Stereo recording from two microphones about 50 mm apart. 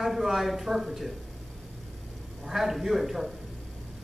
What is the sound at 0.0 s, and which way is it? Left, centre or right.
Speech, centre.